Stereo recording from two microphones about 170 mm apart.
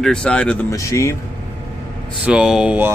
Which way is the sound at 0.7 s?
20° left (ahead or behind).